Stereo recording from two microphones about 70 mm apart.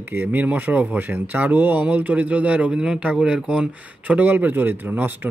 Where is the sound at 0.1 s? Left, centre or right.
Right.